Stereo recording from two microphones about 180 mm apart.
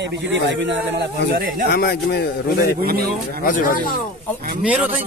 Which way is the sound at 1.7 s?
60° left (ahead or behind).